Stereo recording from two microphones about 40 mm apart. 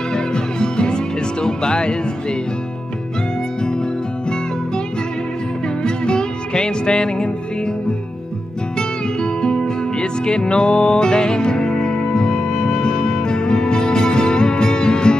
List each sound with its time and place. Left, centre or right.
0.1 s music: left
5.8 s music: left
8.7 s music: left